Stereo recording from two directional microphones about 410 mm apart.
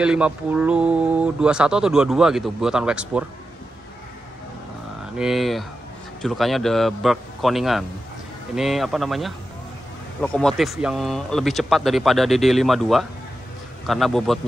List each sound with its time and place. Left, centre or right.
0.0 s speech: centre
5.1 s speech: centre